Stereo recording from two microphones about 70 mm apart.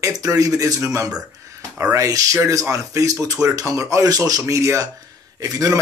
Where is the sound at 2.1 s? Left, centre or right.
Right.